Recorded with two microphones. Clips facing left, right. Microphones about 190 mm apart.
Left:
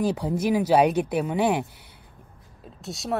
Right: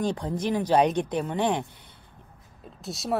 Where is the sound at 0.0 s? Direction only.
10° left (ahead or behind).